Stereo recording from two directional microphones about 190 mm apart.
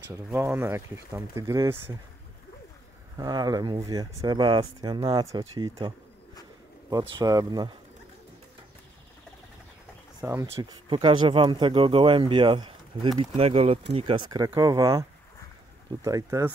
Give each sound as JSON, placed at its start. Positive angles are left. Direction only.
{"t": 0.3, "sound": "speech", "side_deg": -15}
{"t": 3.2, "sound": "speech", "side_deg": -20}
{"t": 10.2, "sound": "speech", "side_deg": -15}